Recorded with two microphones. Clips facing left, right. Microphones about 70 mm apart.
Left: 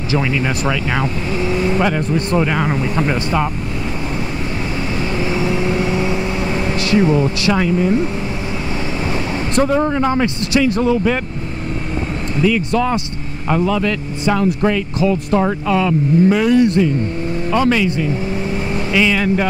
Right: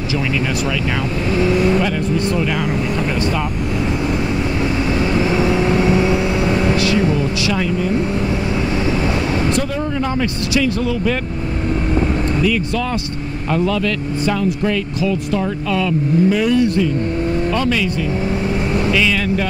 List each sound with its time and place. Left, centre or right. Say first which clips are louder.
1.4 s speech: right 1 dB; left
6.8 s speech: left 2 dB; left
9.6 s speech: left 5 dB; left
12.4 s speech: left 3 dB; left
15.0 s speech: left 3 dB; left
18.9 s speech: left 2 dB; centre